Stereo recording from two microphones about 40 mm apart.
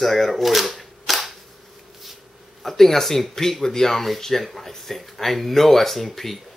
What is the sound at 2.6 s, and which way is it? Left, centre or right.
Speech, centre.